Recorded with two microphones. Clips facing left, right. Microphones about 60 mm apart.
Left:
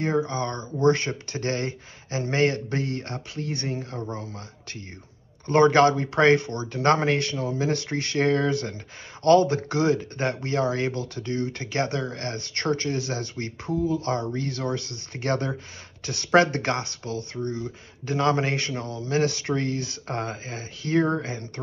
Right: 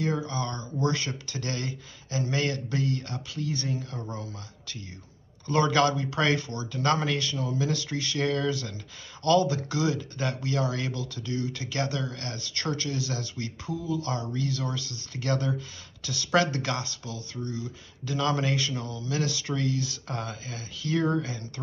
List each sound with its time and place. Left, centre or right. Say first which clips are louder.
0.3 s speech: left 3 dB; left